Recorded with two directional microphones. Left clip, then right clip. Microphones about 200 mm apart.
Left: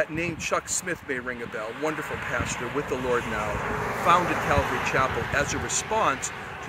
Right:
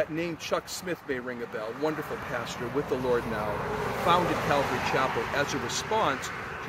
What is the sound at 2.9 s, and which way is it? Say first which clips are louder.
Speech: left 1 dB; 10° left (ahead or behind).